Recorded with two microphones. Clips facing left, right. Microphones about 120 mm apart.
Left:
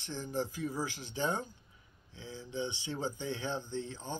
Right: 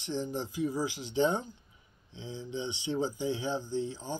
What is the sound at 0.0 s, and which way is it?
Speech, 20° right (ahead or behind).